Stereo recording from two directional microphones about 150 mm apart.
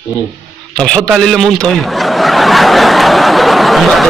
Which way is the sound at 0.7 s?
5° left (ahead or behind).